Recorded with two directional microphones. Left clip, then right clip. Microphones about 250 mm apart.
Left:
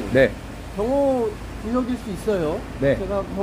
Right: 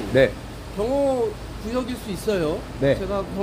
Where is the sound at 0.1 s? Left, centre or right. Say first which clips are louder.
Left 1 dB; centre.